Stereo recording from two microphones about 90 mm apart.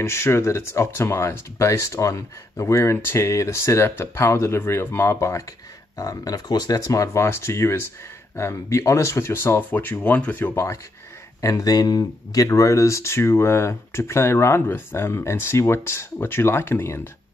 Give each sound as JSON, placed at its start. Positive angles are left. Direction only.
{"t": 0.0, "sound": "speech", "side_deg": 30}
{"t": 5.9, "sound": "speech", "side_deg": 40}
{"t": 10.5, "sound": "speech", "side_deg": 30}
{"t": 12.4, "sound": "speech", "side_deg": 35}